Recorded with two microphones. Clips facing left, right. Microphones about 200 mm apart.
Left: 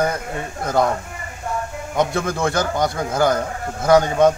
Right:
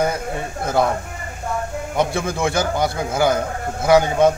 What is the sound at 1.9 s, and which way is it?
Speech, 5° right (ahead or behind).